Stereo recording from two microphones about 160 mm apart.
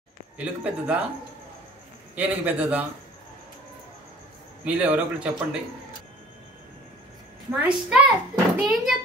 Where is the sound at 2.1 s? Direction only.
10° right (ahead or behind).